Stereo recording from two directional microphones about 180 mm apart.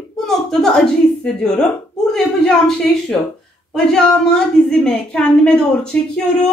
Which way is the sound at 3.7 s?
5° left (ahead or behind).